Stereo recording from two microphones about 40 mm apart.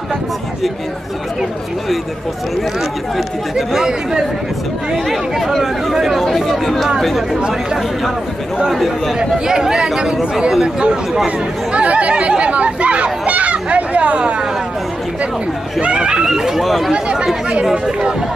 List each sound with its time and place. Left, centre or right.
3.2 s speech: centre
3.8 s speech: centre
4.9 s speech: centre
7.3 s speech: right
8.7 s speech: centre
9.2 s speech: centre; by 14.3 s right
15.8 s speech: right
16.3 s speech: centre
16.9 s speech: right